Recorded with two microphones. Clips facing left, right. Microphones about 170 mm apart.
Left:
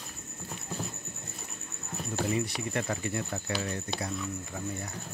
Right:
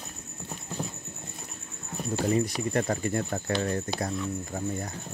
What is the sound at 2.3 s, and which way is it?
Speech, 40° right (ahead or behind).